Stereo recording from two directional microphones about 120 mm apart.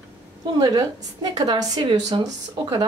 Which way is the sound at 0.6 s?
35° right (ahead or behind).